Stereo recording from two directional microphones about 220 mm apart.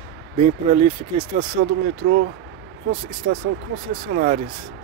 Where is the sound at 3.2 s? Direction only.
50° right (ahead or behind).